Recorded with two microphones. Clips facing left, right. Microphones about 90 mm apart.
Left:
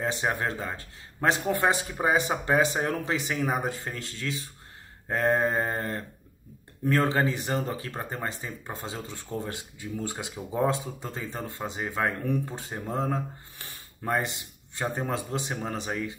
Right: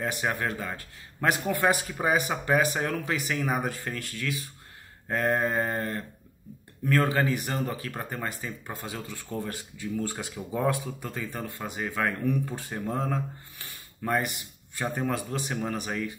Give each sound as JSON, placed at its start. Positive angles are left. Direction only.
{"t": 0.0, "sound": "speech", "side_deg": 25}